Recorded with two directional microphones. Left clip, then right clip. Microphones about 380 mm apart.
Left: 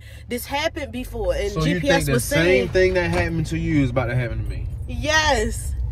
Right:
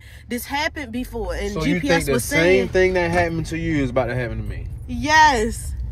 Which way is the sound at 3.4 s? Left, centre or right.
Right.